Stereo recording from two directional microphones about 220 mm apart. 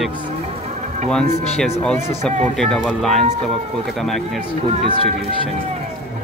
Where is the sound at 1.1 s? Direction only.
5° left (ahead or behind).